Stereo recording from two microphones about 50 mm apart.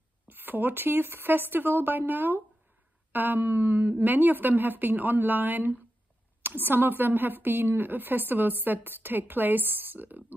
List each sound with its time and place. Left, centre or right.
0.3 s a woman's voice: right